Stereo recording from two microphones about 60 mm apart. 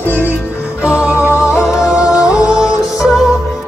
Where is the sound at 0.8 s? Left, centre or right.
Right.